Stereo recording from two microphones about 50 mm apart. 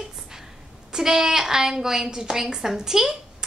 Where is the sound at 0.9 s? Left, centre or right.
Centre.